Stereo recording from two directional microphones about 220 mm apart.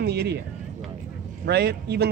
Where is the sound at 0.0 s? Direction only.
50° right (ahead or behind).